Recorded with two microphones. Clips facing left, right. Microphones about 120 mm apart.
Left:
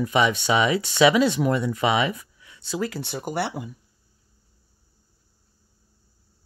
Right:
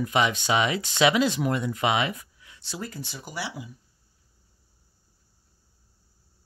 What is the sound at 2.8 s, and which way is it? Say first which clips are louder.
Speech: left 8 dB; 80° left.